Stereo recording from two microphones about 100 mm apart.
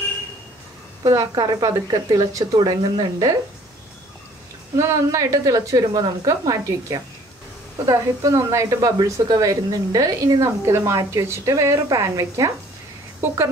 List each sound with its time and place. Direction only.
1.0 s a woman's voice: 35° right (ahead or behind)
4.7 s a woman's voice: 30° right (ahead or behind)